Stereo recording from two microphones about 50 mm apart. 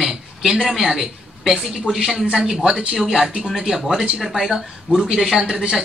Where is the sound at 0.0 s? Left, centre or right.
Centre.